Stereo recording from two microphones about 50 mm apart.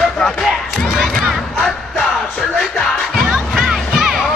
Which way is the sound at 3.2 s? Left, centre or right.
Centre.